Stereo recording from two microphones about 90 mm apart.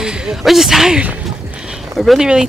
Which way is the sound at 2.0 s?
Centre (ahead or behind).